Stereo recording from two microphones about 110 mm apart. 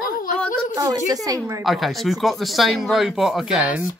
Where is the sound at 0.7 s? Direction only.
30° right (ahead or behind).